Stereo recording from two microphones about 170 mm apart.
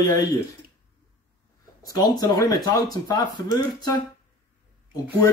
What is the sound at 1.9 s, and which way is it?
Speech, 25° left (ahead or behind).